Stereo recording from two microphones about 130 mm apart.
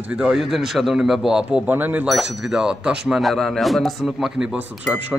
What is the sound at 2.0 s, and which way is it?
A man's voice, centre (ahead or behind).